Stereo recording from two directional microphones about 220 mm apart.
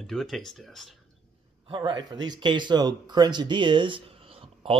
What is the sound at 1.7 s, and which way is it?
Speech, 20° right (ahead or behind).